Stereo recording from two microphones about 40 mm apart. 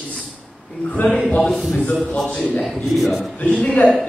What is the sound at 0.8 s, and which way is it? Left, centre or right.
Speech, left.